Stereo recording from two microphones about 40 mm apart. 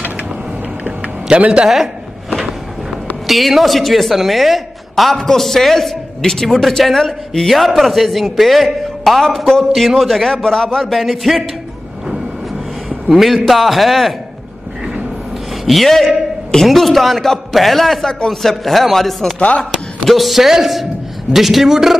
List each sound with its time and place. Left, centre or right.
1.3 s speech: right
3.3 s a woman's voice: centre
10.3 s speech: centre
10.9 s a woman's voice: centre
13.1 s a woman's voice: centre
15.6 s a woman's voice: centre